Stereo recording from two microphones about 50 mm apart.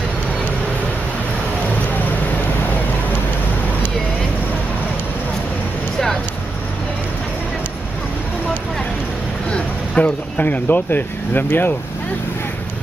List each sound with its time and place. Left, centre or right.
9.5 s speech: left